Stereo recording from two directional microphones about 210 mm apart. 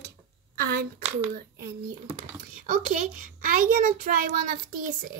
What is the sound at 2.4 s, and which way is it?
A child's voice, 40° right (ahead or behind).